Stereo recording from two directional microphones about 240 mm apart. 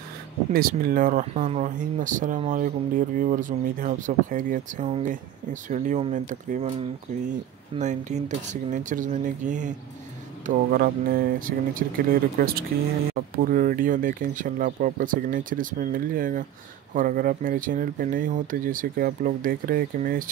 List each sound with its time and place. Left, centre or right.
0.5 s speech: right
7.7 s speech: right